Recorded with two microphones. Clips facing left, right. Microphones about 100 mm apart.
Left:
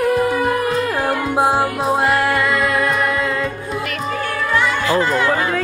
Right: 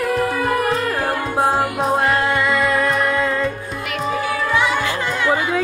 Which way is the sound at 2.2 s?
Centre (ahead or behind).